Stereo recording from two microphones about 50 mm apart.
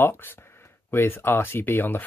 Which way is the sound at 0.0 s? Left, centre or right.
Left.